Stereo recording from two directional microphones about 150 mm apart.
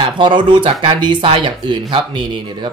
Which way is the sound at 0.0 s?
30° right (ahead or behind).